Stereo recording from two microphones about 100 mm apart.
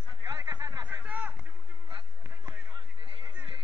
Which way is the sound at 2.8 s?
60° right (ahead or behind).